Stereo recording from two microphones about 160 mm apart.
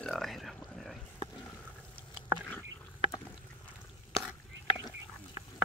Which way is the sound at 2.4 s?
10° left (ahead or behind).